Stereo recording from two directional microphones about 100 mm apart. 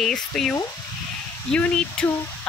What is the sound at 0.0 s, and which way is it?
Speech, 5° left (ahead or behind).